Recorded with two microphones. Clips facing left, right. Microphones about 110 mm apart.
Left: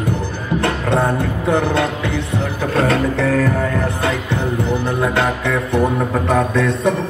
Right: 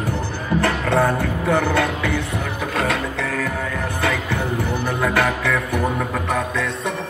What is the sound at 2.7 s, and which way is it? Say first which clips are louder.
Music: left 7 dB; 35° left (ahead or behind).